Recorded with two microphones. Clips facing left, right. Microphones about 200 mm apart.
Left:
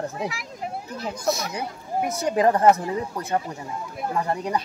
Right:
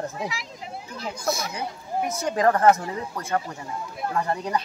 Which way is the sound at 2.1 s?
15° left (ahead or behind).